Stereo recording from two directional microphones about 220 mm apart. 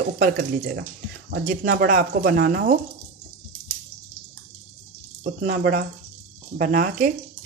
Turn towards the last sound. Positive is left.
turn(degrees=-40)  # may be behind; listen again after turning